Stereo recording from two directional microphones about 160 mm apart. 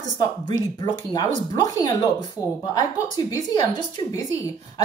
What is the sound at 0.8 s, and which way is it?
A woman's voice, 25° left (ahead or behind).